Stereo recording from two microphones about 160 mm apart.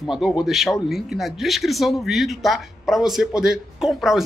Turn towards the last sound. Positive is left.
turn(degrees=0)  # may be behind; listen again after turning